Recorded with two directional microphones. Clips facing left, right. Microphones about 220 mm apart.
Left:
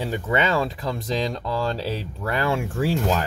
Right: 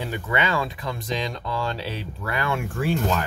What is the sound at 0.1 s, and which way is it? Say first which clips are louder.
Speech: left 3 dB; 40° left (ahead or behind).